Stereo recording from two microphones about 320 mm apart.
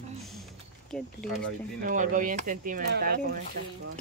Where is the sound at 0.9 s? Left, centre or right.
Centre.